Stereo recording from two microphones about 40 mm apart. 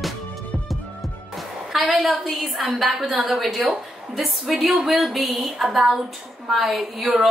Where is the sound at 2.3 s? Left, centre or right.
Centre.